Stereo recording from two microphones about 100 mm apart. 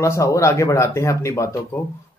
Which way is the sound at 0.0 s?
30° left (ahead or behind).